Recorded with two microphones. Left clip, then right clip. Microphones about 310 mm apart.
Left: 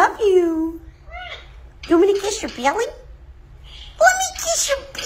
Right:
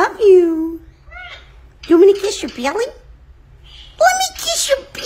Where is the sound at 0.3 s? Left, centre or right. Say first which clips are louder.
Right 6 dB; right.